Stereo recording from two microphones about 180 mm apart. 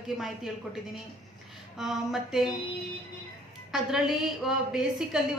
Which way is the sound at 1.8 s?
Centre (ahead or behind).